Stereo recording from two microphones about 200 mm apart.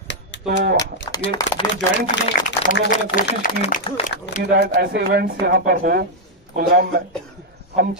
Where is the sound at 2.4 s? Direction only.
40° left (ahead or behind).